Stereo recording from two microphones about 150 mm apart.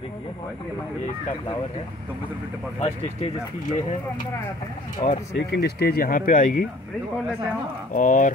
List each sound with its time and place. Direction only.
2.8 s speech: 45° left (ahead or behind)
5.0 s speech: 30° left (ahead or behind)
5.5 s speech: 90° left; by 6.6 s 60° left (ahead or behind)
7.9 s speech: 60° left (ahead or behind)